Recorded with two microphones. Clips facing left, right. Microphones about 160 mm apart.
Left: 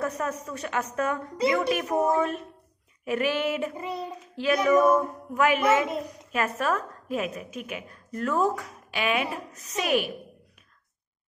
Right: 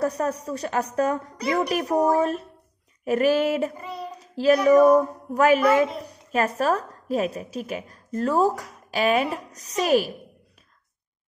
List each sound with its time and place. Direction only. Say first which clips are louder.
0.0 s a child's voice: right 5 dB; 35° right (ahead or behind)
3.7 s child singing: left 3 dB; 20° left (ahead or behind)
4.2 s a child's voice: right 7 dB; 40° right (ahead or behind)